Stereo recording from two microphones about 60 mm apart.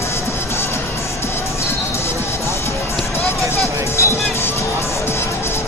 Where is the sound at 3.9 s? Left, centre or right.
Left.